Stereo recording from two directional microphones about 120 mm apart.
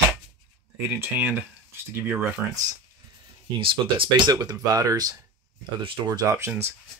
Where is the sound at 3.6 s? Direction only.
45° right (ahead or behind).